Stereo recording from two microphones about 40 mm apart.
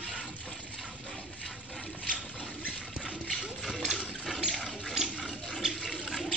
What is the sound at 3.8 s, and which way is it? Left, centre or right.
Water, centre.